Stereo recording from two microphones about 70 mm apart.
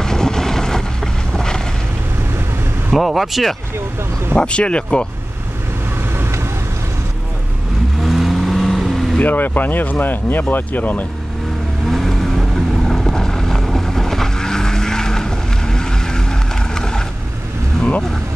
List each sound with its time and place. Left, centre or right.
0.0 s vehicle: centre
2.9 s speech: centre
4.4 s speech: centre
8.0 s vehicle: centre
9.2 s speech: left
11.9 s vehicle: centre